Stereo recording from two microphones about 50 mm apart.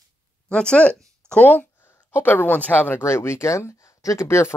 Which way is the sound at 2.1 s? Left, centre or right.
Left.